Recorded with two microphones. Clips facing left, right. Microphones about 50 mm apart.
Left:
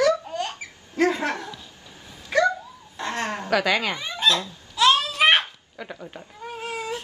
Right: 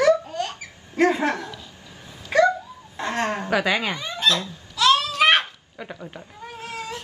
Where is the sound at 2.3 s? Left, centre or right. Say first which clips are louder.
Right 3 dB; right.